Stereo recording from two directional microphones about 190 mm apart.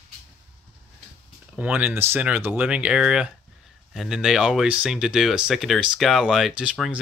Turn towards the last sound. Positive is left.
turn(degrees=-5)  # may be behind; listen again after turning